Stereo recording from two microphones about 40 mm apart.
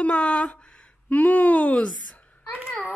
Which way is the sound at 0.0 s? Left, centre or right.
Left.